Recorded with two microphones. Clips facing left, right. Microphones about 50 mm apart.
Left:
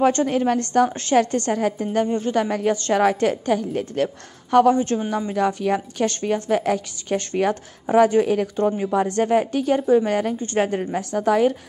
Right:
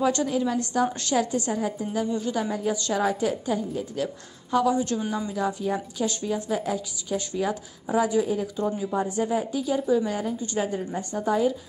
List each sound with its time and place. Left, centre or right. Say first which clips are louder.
0.0 s speech: left 5 dB; left
0.8 s a woman's voice: left 3 dB; left
1.1 s a woman's voice: left 8 dB; left
5.3 s a woman's voice: left 8 dB; left
8.9 s a woman's voice: left 7 dB; left
10.4 s speech: left 6 dB; left
10.7 s a woman's voice: left 6 dB; left